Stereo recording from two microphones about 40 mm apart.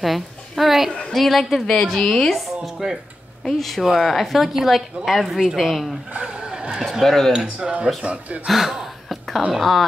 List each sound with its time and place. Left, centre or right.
0.0 s a woman's voice: centre
1.1 s a woman's voice: centre
2.3 s speech: centre
3.4 s a woman's voice: centre
6.2 s vehicle: right
6.8 s speech: centre
7.4 s speech: right
8.5 s a sound: centre
9.5 s speech: centre